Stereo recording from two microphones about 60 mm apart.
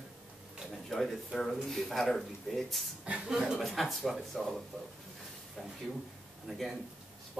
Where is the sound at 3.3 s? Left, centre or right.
Centre.